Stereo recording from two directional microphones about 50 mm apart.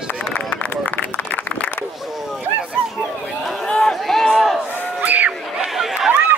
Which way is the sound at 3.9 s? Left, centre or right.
Centre.